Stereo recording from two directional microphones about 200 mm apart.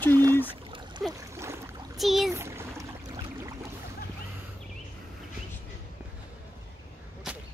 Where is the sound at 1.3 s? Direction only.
15° right (ahead or behind).